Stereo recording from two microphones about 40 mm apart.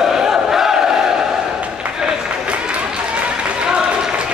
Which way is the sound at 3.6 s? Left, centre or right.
Right.